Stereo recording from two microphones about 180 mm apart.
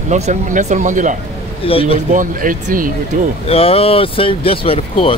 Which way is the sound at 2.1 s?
50° right (ahead or behind).